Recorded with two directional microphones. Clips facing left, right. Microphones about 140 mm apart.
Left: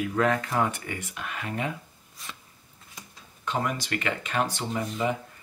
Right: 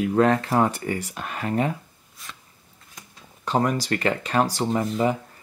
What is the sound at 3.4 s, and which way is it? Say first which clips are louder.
Speech: right 6 dB; 35° right (ahead or behind).